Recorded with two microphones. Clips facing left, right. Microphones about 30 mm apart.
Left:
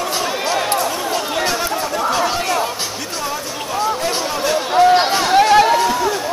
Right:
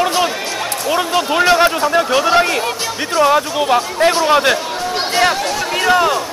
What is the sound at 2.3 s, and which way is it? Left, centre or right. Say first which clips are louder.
Speech: right 5 dB; right.